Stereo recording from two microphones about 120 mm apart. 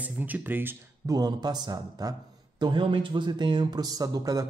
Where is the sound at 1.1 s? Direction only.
35° right (ahead or behind).